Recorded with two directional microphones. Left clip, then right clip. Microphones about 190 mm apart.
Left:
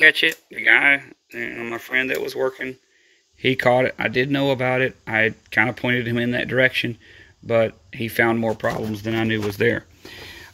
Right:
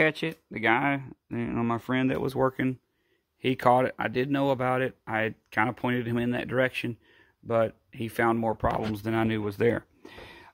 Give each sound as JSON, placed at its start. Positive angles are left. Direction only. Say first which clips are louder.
{"t": 0.0, "sound": "speech", "louder": "left 11 dB", "side_deg": -15}